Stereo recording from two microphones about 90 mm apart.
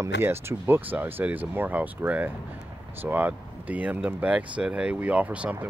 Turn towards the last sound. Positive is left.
turn(degrees=-15)  # may be behind; listen again after turning